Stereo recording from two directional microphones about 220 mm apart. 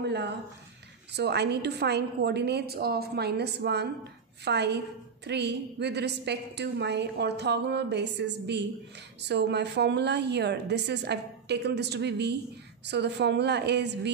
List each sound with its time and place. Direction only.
0.0 s a woman's voice: 50° right (ahead or behind)